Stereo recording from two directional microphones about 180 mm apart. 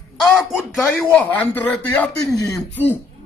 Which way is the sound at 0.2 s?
Centre (ahead or behind).